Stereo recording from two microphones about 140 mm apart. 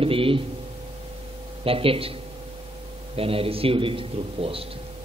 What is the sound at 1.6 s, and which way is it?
Speech, 40° right (ahead or behind).